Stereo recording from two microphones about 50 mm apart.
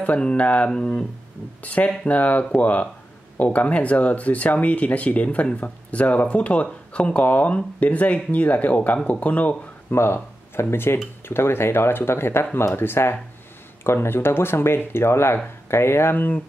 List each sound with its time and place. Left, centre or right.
0.0 s speech: left
9.8 s speech: left